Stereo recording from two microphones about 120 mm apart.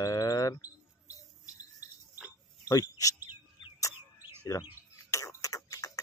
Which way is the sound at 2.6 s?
30° left (ahead or behind).